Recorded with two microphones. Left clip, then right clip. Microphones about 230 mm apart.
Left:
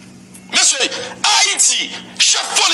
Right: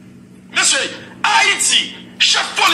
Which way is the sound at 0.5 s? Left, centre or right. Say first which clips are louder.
Left 1 dB; left.